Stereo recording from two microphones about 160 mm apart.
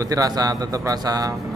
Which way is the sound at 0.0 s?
20° right (ahead or behind).